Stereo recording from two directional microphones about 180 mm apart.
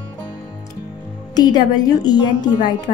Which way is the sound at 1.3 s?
20° left (ahead or behind).